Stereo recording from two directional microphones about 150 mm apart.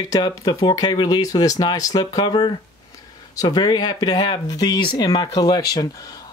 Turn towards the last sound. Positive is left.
turn(degrees=25)  # may be behind; listen again after turning